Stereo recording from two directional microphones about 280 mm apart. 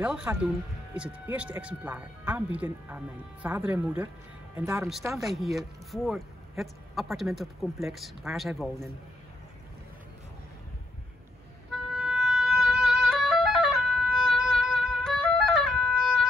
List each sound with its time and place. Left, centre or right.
0.0 s speech: centre
11.9 s music: centre